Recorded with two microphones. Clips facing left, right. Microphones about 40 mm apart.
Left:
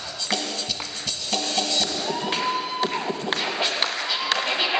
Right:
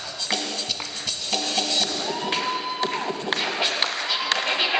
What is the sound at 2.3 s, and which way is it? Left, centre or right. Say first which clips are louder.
Music: left 1 dB; centre.